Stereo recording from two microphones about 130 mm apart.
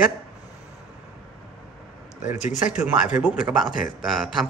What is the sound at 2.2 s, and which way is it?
Speech, 70° left (ahead or behind).